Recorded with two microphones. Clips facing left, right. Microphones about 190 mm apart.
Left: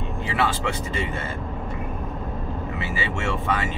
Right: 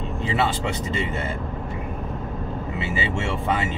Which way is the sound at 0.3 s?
25° right (ahead or behind).